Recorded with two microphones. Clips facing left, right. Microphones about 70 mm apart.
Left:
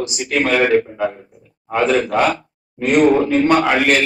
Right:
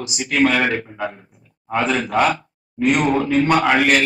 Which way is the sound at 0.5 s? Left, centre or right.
Centre.